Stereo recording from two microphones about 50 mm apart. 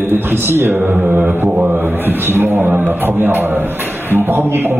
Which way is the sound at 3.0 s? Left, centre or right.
Right.